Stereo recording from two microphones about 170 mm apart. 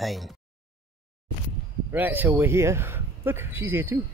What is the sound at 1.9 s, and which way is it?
Speech, 10° right (ahead or behind).